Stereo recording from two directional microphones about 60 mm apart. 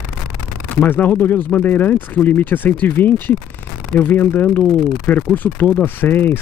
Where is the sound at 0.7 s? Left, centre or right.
Left.